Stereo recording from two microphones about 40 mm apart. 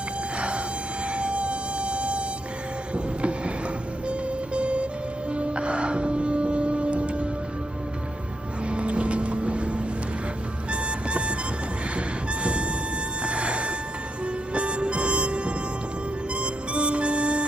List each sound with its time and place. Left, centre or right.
1.0 s music: right
2.9 s a sound: right
4.1 s music: right
8.6 s boat: right
10.7 s music: right
12.4 s music: right
13.2 s a sound: right
14.2 s music: right
16.3 s harmonica: right